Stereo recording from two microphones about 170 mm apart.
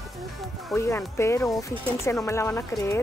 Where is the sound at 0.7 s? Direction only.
15° left (ahead or behind).